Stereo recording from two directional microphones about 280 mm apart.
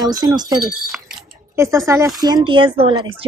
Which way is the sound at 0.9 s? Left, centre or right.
Centre.